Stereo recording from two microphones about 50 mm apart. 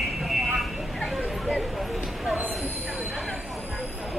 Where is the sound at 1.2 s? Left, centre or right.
Centre.